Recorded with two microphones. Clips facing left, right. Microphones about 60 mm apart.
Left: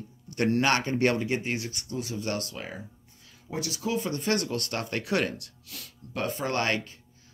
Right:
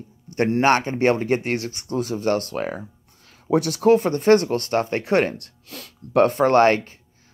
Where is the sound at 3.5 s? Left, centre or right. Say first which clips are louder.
Right 14 dB; right.